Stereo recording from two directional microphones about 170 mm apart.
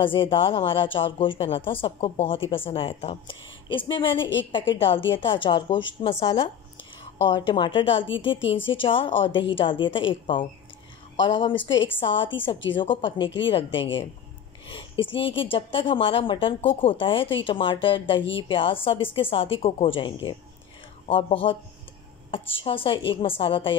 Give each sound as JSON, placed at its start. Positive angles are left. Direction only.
{"t": 0.0, "sound": "a woman's voice", "side_deg": 30}